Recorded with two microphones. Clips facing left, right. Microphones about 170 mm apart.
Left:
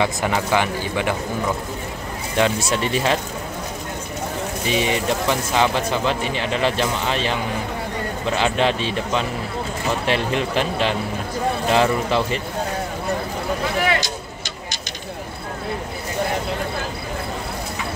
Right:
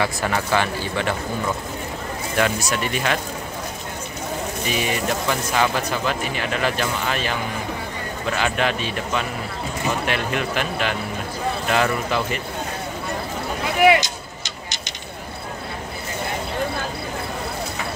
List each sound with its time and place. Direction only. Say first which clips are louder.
0.0 s speech: left 2 dB; 15° left (ahead or behind)
2.3 s speech: left 2 dB; 25° left (ahead or behind)
4.6 s speech: left 3 dB; 25° left (ahead or behind)
13.8 s vehicle: right 6 dB; 20° right (ahead or behind)